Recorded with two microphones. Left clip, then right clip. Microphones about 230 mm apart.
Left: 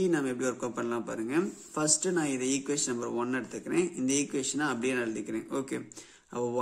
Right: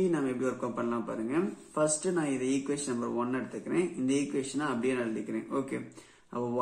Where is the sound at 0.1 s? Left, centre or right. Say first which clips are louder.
Left 1 dB; left.